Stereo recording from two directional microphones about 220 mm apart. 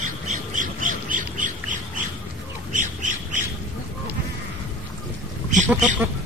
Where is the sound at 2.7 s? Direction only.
35° right (ahead or behind).